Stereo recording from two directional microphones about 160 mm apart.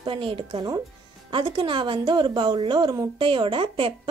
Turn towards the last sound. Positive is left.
turn(degrees=-35)  # may be behind; listen again after turning